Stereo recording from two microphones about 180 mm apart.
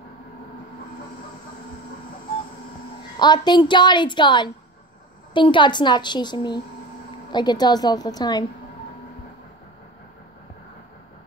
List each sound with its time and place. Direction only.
3.2 s a woman's voice: 25° left (ahead or behind)